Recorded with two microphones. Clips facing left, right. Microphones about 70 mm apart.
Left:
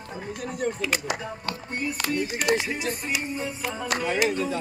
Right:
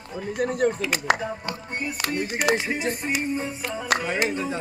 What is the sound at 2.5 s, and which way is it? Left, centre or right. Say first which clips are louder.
Music: right 1 dB; right.